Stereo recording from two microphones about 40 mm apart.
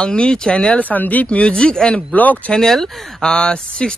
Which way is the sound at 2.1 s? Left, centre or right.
Left.